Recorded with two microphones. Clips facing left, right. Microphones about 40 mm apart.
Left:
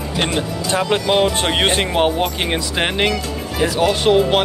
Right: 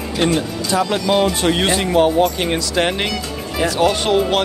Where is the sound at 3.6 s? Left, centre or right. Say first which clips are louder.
Left 1 dB; centre.